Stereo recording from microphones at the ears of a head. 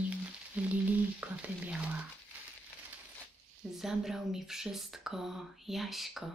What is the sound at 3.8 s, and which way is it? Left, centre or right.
Speech, centre.